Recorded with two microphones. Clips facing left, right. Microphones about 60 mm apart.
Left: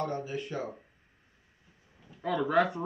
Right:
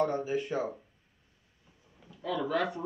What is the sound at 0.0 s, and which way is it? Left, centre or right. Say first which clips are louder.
Speech: right 4 dB; centre.